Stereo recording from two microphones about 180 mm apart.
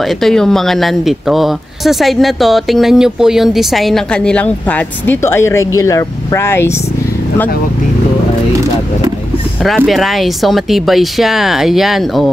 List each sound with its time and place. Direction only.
0.0 s speech: centre (ahead or behind)
9.6 s speech: centre (ahead or behind)